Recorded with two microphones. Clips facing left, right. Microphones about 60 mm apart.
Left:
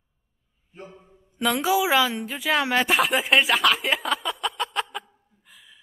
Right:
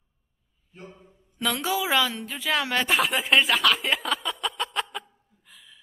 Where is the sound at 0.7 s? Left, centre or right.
Centre.